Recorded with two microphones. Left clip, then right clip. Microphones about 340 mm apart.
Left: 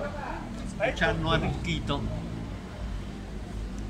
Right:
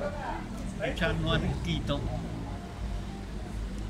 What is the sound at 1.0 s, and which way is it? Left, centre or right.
Speech, centre.